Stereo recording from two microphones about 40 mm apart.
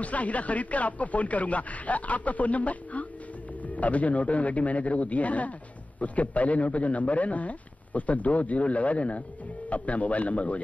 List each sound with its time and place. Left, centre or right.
0.0 s a man's voice: left